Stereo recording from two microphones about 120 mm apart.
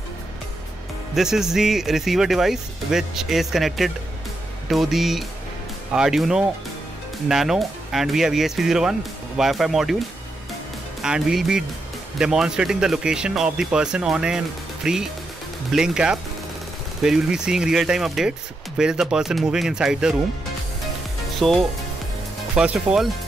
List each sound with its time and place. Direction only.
1.1 s speech: 5° right (ahead or behind)
11.0 s speech: 5° right (ahead or behind)
21.4 s speech: centre (ahead or behind)